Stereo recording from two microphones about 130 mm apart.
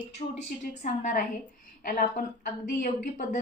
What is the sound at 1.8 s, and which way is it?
Speech, 90° left.